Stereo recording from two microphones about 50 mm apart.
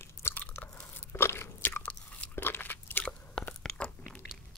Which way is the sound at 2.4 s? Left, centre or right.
Left.